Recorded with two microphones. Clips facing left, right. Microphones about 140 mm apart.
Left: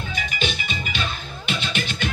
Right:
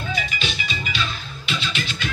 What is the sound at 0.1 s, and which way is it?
Music, 50° left (ahead or behind).